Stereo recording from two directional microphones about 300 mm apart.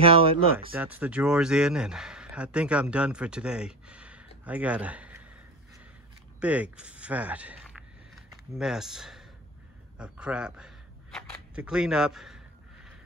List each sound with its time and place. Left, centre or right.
0.0 s speech: centre
0.7 s speech: centre
6.4 s speech: centre